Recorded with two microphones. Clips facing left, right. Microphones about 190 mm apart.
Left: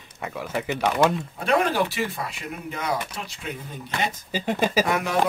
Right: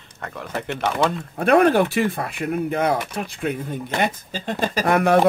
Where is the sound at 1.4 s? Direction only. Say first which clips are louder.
Right 7 dB; 55° right (ahead or behind).